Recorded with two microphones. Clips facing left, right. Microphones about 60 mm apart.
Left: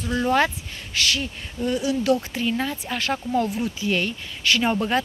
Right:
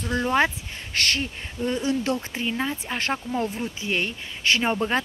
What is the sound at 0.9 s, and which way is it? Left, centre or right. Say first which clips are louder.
A woman's voice: left 1 dB; right.